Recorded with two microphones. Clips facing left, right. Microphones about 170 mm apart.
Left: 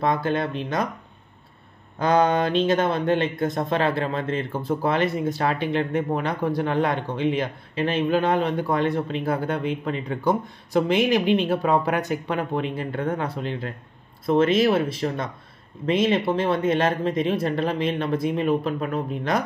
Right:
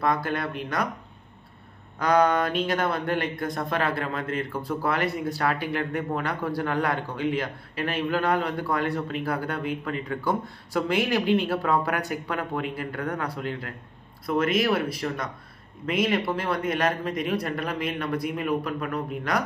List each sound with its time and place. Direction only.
0.0 s speech: 20° left (ahead or behind)
2.0 s speech: 25° left (ahead or behind)